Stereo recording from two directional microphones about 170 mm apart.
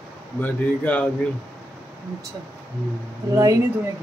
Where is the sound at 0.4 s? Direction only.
10° left (ahead or behind).